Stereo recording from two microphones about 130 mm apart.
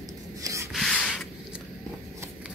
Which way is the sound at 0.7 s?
5° left (ahead or behind).